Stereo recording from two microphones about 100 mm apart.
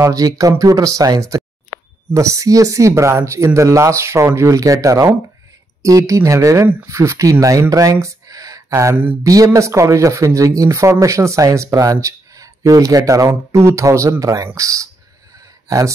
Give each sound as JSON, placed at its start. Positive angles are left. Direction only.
{"t": 0.0, "sound": "speech", "side_deg": -35}
{"t": 7.7, "sound": "a sound", "side_deg": -35}
{"t": 9.2, "sound": "speech", "side_deg": -35}